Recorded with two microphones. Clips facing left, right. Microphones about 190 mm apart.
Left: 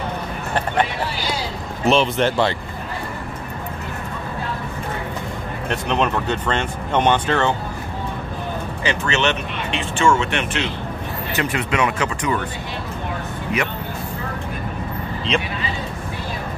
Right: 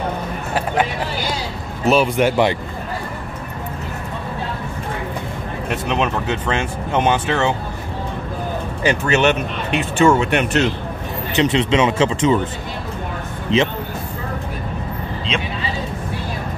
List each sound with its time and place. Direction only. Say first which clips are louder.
1.9 s speech: right 2 dB; 10° right (ahead or behind)
5.7 s speech: even; 5° right (ahead or behind)
8.8 s speech: right 5 dB; 45° right (ahead or behind)
11.3 s speech: right 6 dB; 20° right (ahead or behind)
13.5 s speech: right 7 dB; 25° right (ahead or behind)